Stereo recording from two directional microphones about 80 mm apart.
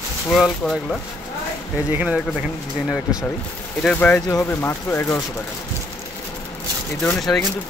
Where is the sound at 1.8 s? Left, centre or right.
Centre.